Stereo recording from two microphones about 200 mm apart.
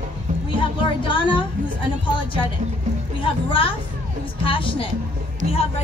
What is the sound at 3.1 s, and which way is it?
A woman's voice, 25° left (ahead or behind).